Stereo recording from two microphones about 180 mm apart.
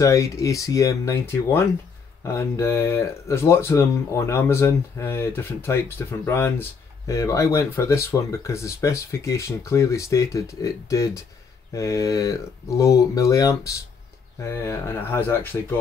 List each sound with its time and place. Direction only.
0.0 s speech: 20° left (ahead or behind)